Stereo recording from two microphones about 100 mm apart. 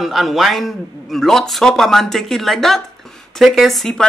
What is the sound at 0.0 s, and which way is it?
Speech, centre (ahead or behind).